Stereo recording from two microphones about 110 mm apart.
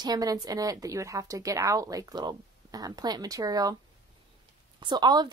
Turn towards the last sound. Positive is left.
turn(degrees=-40)  # may be behind; listen again after turning